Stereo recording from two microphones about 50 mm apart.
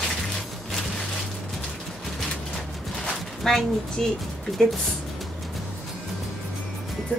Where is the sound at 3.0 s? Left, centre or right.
Centre.